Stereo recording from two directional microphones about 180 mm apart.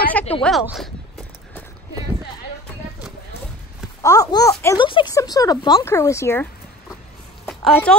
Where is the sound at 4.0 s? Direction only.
20° left (ahead or behind).